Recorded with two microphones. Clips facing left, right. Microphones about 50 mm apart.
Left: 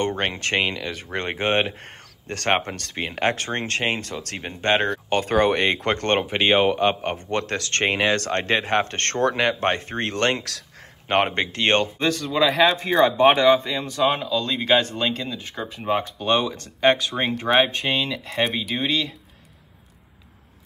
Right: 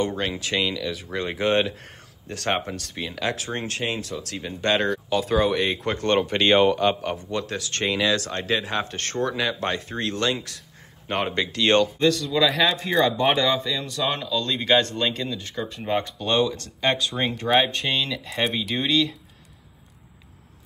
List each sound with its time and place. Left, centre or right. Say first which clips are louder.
0.0 s speech: left 2 dB; left
5.1 s speech: left 3 dB; left
6.2 s speech: right 1 dB; centre
6.9 s a man's voice: left 1 dB; left
7.2 s speech: left 3 dB; left
9.6 s a man's voice: left 3 dB; left
11.3 s a man's voice: right 1 dB; left
12.4 s speech: left 5 dB; centre
13.2 s a man's voice: left 6 dB; left
17.1 s speech: left 1 dB; centre